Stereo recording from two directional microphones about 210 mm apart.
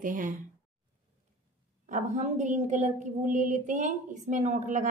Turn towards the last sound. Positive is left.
turn(degrees=-35)  # may be behind; listen again after turning